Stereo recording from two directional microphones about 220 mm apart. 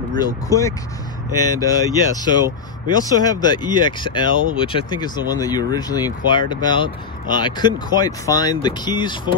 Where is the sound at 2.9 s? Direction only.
20° left (ahead or behind).